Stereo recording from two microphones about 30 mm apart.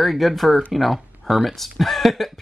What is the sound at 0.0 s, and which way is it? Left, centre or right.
Speech, centre.